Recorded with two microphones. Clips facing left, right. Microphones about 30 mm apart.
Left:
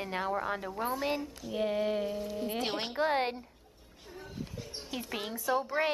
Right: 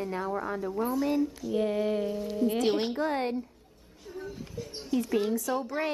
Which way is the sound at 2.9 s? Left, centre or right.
Left.